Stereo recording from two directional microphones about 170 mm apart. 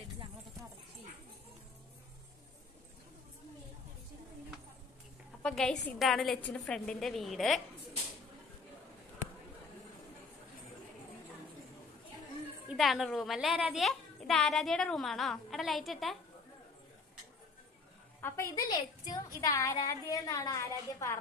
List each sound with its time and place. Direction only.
5.4 s a child's voice: 5° left (ahead or behind)
12.6 s a child's voice: centre (ahead or behind)
18.2 s a woman's voice: 15° left (ahead or behind)